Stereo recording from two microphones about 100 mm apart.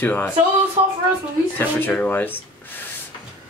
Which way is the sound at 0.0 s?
20° left (ahead or behind).